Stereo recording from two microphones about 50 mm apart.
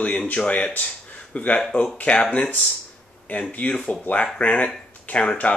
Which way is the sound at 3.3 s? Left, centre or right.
Left.